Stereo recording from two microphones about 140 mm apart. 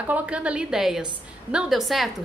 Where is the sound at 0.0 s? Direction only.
10° right (ahead or behind).